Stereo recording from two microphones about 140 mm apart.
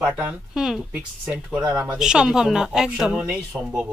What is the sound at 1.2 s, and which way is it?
Speech, 15° right (ahead or behind).